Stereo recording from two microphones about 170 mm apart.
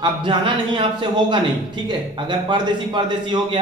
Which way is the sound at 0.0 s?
30° right (ahead or behind).